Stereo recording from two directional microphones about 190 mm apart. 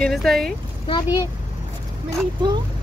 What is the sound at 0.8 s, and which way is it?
Speech, 20° left (ahead or behind).